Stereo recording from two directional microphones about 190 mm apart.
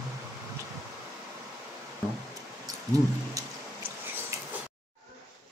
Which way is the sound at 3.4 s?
15° right (ahead or behind).